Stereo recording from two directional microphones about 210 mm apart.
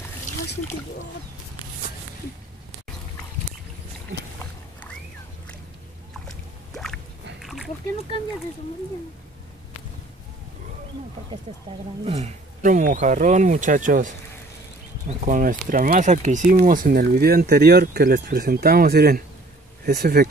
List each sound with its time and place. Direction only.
6.2 s boat: centre (ahead or behind)
7.4 s a sound: centre (ahead or behind)
11.5 s speech: 30° right (ahead or behind); by 20.2 s 45° right (ahead or behind)